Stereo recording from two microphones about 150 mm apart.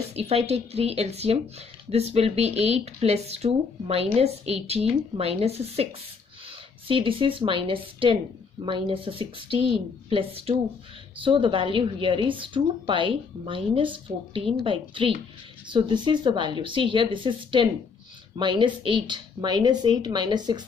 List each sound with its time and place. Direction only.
0.1 s a woman's voice: 45° right (ahead or behind)
6.9 s a woman's voice: 35° right (ahead or behind)